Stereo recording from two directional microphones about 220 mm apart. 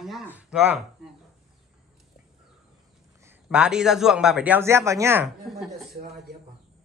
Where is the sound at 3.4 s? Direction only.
5° right (ahead or behind).